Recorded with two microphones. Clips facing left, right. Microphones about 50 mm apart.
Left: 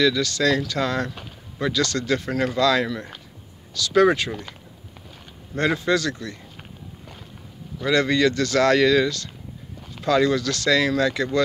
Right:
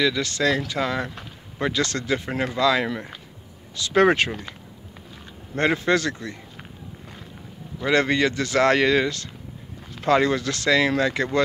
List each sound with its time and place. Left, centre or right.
0.0 s a man's voice: right
1.6 s a man's voice: right
3.7 s speech: right
5.5 s speech: right
7.8 s a man's voice: right